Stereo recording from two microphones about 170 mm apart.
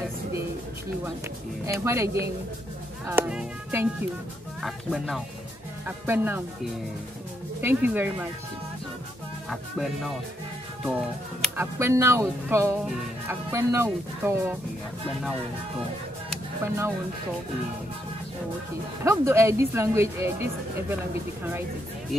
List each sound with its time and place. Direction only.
1.7 s speech: 15° right (ahead or behind)
3.1 s speech: 10° right (ahead or behind)
5.9 s speech: 10° right (ahead or behind)
7.6 s speech: 10° right (ahead or behind)
9.5 s speech: centre (ahead or behind)
11.5 s speech: 15° right (ahead or behind)
16.6 s speech: 15° right (ahead or behind)
19.0 s speech: 15° right (ahead or behind)